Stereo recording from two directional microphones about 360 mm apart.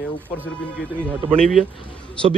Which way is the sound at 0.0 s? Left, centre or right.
Centre.